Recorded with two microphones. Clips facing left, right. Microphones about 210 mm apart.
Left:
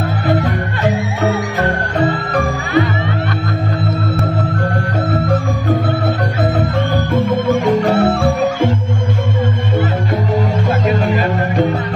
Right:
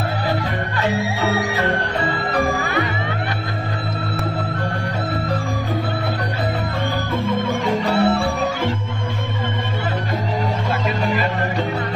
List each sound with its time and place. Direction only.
0.4 s music: 50° left (ahead or behind)
7.4 s music: 50° left (ahead or behind)